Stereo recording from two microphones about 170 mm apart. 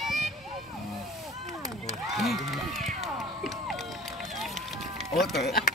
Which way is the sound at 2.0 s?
Centre (ahead or behind).